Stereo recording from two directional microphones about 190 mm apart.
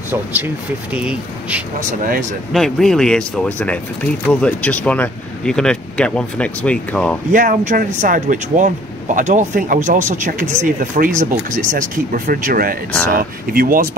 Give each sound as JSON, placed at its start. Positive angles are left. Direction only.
{"t": 0.1, "sound": "speech", "side_deg": -10}
{"t": 7.3, "sound": "speech", "side_deg": -45}